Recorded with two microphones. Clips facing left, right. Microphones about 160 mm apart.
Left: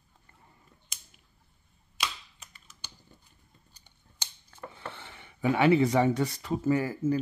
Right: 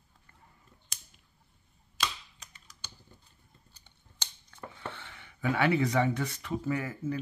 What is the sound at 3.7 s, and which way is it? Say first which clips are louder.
Scissors: even; 15° left (ahead or behind).